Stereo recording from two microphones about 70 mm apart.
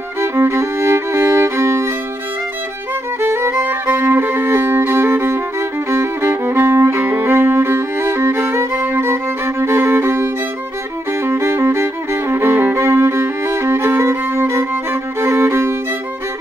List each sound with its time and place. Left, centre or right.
0.2 s music: right
3.2 s violin: right
3.6 s violin: right
11.2 s music: right